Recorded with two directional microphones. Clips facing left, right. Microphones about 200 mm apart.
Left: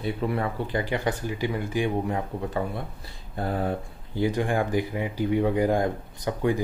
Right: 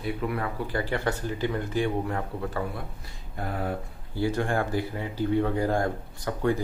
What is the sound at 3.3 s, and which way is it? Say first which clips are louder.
Speech: left 4 dB; 30° left (ahead or behind).